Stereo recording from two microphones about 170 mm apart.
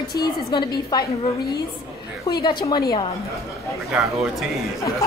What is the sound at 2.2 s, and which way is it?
Speech, 25° left (ahead or behind).